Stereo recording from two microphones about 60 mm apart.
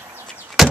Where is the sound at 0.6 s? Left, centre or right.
Centre.